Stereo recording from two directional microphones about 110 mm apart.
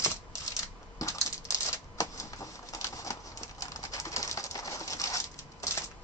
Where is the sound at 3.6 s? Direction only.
30° left (ahead or behind).